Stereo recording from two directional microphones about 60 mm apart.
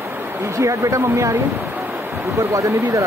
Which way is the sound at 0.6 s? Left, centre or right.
Right.